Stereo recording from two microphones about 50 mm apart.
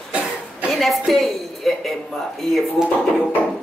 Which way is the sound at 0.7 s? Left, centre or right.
Centre.